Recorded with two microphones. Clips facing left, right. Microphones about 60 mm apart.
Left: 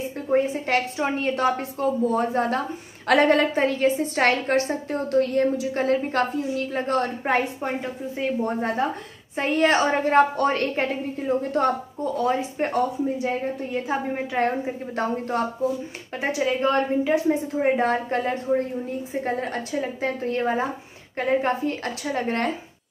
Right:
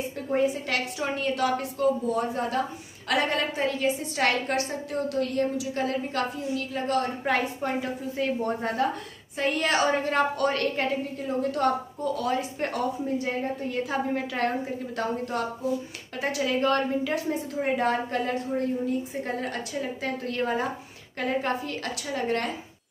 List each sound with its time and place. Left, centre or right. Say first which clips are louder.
0.3 s a woman's voice: left 4 dB; left
13.8 s a woman's voice: left 2 dB; left
15.0 s a woman's voice: left 4 dB; left
16.2 s a woman's voice: left 3 dB; left